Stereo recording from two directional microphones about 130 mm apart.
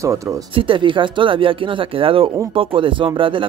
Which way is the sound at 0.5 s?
40° right (ahead or behind).